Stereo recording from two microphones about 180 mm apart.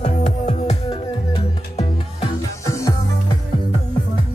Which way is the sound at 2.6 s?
15° left (ahead or behind).